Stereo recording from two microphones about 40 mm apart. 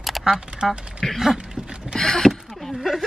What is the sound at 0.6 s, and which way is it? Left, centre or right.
Speech, centre.